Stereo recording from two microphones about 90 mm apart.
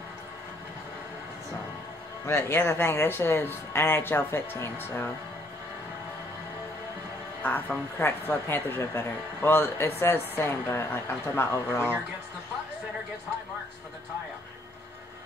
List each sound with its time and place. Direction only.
2.2 s speech: 25° left (ahead or behind)
7.4 s speech: 20° left (ahead or behind)